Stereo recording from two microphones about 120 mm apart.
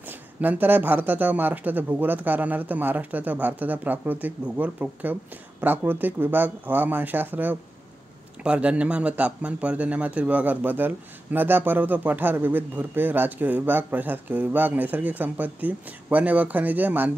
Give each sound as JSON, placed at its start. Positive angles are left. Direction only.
{"t": 0.0, "sound": "a man's voice", "side_deg": -15}